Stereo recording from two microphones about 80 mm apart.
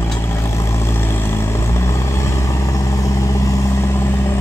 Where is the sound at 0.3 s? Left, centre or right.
Left.